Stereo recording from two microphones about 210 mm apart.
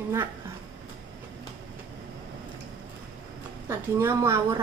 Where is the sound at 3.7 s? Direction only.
10° right (ahead or behind).